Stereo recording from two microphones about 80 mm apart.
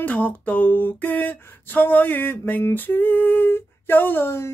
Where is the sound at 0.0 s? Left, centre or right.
Centre.